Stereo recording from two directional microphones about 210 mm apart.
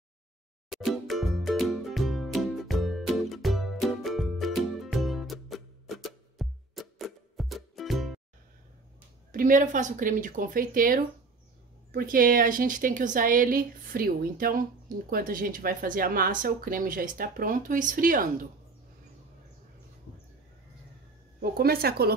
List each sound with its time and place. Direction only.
0.7 s music: centre (ahead or behind)
9.3 s speech: 40° right (ahead or behind)
21.4 s speech: 45° right (ahead or behind)